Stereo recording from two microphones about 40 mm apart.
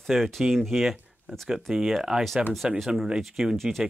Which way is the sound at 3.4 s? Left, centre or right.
Centre.